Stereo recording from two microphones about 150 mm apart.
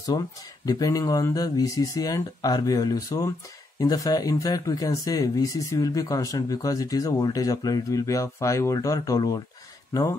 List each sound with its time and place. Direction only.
0.7 s speech: 25° left (ahead or behind)